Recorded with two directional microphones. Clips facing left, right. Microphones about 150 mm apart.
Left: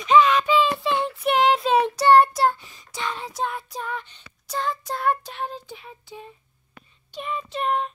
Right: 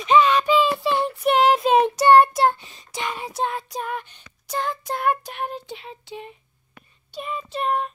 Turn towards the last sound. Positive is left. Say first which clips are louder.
# right 1 dB
turn(degrees=-5)  # may be behind; listen again after turning